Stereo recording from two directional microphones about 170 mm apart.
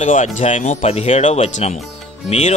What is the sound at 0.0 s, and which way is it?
Speech, 45° left (ahead or behind).